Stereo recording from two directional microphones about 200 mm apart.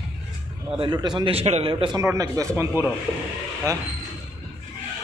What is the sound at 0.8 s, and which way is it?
A man's voice, 20° right (ahead or behind).